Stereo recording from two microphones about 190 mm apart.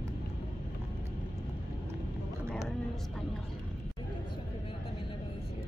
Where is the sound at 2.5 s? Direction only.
5° left (ahead or behind).